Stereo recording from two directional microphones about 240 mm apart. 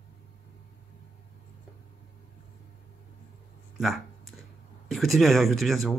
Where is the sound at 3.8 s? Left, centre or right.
Centre.